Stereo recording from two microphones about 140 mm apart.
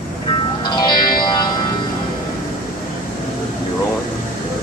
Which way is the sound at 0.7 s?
30° left (ahead or behind).